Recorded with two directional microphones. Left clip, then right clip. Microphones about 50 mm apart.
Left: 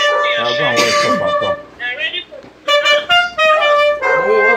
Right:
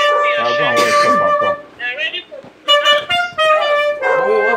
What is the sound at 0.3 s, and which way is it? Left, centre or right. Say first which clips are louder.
Music: right 1 dB; right.